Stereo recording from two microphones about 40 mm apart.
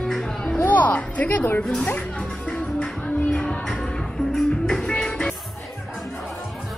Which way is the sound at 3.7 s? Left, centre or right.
Centre.